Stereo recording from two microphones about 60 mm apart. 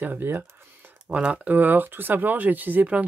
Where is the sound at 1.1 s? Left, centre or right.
Right.